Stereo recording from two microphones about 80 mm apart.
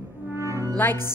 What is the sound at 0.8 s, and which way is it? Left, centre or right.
Speech, left.